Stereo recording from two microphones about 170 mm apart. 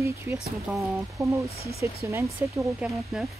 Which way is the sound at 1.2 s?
20° right (ahead or behind).